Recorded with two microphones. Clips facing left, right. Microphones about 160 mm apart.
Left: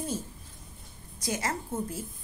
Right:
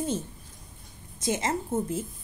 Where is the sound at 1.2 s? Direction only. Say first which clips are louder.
Right 4 dB; 25° right (ahead or behind).